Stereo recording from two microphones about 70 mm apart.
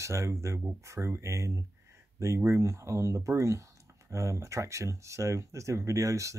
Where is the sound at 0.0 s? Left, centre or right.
Right.